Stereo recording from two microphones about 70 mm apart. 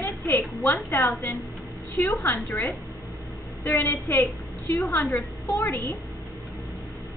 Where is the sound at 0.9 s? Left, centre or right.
Left.